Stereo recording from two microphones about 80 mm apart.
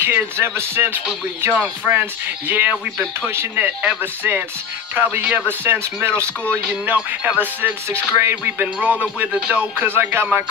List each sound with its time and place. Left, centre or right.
0.0 s speech: right
7.1 s speech: right
9.2 s speech: centre